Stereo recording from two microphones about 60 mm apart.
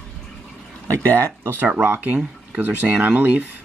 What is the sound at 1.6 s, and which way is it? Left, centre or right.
Speech, right.